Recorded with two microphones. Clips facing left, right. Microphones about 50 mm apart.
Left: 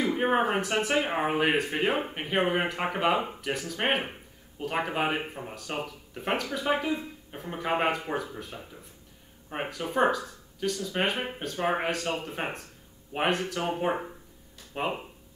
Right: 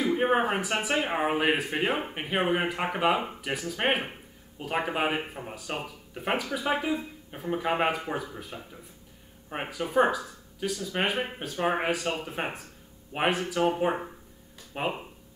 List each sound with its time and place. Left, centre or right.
0.2 s speech: centre